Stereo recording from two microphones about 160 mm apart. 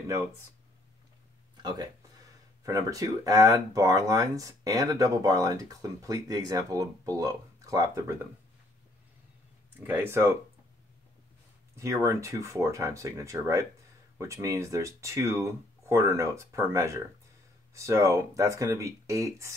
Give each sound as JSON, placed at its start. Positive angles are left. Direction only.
{"t": 1.6, "sound": "speech", "side_deg": -25}
{"t": 9.8, "sound": "speech", "side_deg": -15}
{"t": 11.7, "sound": "speech", "side_deg": -20}